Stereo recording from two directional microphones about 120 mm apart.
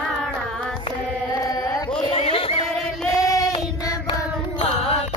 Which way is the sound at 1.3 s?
30° left (ahead or behind).